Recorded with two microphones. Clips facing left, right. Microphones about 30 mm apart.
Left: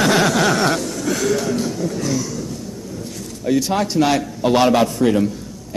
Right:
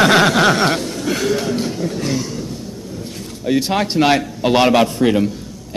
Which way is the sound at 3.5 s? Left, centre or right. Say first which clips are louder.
Right 1 dB; right.